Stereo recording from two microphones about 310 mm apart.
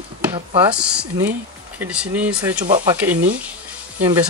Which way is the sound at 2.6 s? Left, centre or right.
Right.